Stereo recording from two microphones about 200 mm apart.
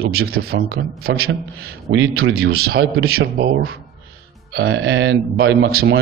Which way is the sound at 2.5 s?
50° right (ahead or behind).